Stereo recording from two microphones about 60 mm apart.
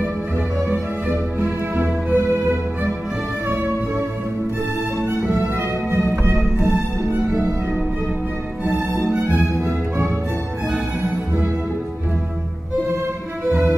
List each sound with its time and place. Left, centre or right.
0.7 s music: right
5.6 s music: right